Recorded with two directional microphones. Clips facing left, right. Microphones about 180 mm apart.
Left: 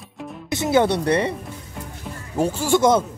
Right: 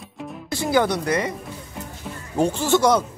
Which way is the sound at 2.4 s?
10° left (ahead or behind).